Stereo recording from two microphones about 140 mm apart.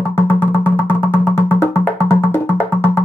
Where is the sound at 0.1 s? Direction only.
15° left (ahead or behind).